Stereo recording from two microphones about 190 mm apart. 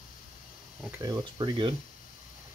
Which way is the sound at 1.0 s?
20° right (ahead or behind).